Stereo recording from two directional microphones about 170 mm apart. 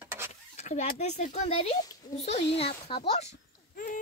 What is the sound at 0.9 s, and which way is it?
A child's voice, 40° left (ahead or behind).